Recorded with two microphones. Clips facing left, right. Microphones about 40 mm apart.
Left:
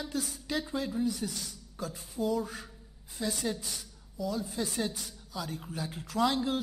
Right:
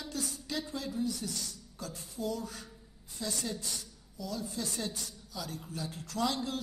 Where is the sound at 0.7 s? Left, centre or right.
Centre.